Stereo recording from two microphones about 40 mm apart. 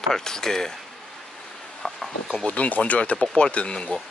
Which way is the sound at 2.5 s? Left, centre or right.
Left.